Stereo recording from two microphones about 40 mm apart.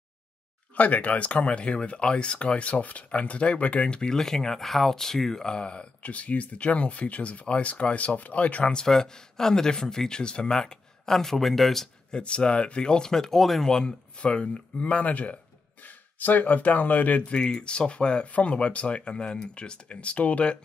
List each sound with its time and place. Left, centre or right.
0.7 s speech: left
8.7 s speech: centre
11.1 s speech: centre
12.1 s speech: left; by 13.7 s centre
13.7 s speech: centre
14.1 s speech: left
17.2 s speech: left